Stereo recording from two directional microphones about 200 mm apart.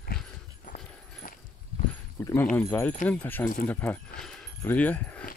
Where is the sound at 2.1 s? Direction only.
10° left (ahead or behind).